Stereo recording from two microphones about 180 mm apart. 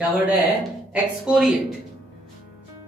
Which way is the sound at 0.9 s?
5° right (ahead or behind).